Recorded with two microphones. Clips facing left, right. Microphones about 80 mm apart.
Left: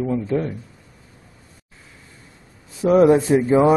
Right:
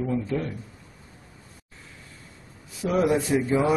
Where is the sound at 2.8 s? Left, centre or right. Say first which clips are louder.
Left 9 dB; left.